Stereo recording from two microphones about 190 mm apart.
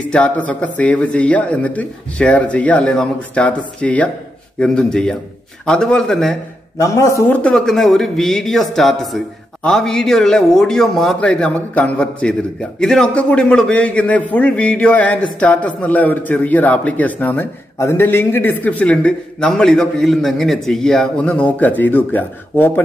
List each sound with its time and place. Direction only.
0.1 s a man's voice: 5° left (ahead or behind)
6.8 s a man's voice: 15° left (ahead or behind)